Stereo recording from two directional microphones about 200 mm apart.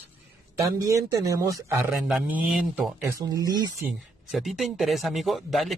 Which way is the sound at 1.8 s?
Centre (ahead or behind).